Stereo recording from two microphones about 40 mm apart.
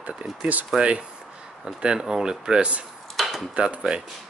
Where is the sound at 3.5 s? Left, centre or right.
Right.